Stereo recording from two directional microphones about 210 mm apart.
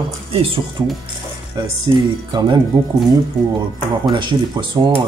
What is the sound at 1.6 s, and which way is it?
Speech, 20° right (ahead or behind).